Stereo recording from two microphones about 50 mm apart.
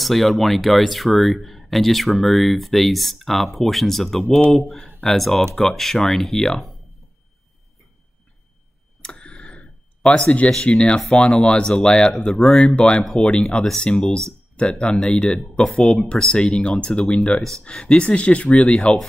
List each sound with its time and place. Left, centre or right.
0.0 s speech: centre
9.2 s a sound: centre
10.0 s speech: centre
12.3 s speech: centre
12.5 s speech: left
13.0 s speech: centre
13.4 s speech: centre
17.6 s speech: centre